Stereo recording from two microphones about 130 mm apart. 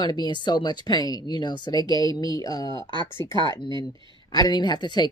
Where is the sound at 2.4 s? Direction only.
30° left (ahead or behind).